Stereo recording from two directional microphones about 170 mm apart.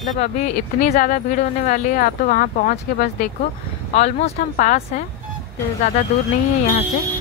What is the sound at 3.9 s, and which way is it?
Speech, 40° left (ahead or behind).